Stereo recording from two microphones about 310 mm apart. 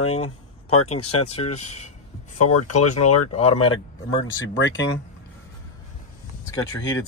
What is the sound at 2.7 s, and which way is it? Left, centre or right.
Speech, left.